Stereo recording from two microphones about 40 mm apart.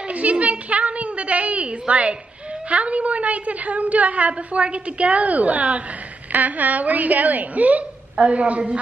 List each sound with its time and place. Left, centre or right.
0.1 s a child's voice: right